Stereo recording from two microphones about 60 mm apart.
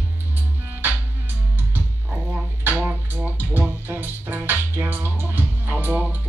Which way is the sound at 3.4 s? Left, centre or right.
Right.